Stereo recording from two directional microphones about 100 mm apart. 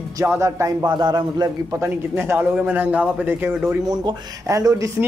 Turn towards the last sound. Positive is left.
turn(degrees=-35)  # may be behind; listen again after turning